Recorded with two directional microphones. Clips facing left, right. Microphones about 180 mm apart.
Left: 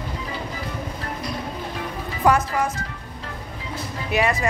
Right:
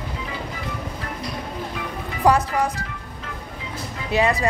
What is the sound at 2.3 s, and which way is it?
Speech, 35° right (ahead or behind).